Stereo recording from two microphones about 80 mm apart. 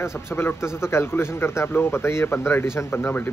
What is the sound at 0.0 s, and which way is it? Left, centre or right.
A man's voice, left.